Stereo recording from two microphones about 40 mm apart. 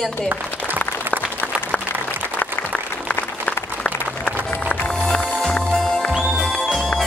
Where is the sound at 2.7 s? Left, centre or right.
Left.